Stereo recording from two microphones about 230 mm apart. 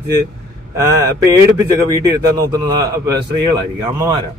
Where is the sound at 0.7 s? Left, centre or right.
Centre.